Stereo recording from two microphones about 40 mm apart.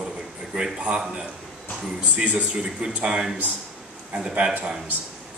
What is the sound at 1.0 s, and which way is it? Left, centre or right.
Speech, centre.